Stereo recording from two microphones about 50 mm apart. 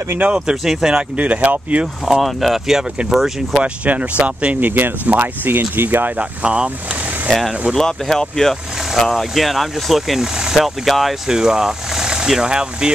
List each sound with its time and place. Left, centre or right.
0.2 s speech: right
0.7 s speech: centre; by 1.9 s right
2.2 s speech: centre
3.6 s speech: right
4.6 s speech: right
6.4 s speech: right
7.7 s speech: centre
11.2 s speech: centre